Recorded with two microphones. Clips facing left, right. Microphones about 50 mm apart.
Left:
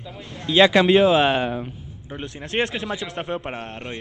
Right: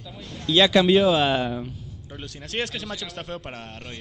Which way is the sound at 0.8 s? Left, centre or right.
Centre.